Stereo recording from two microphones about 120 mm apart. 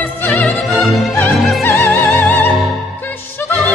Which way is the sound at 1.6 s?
20° left (ahead or behind).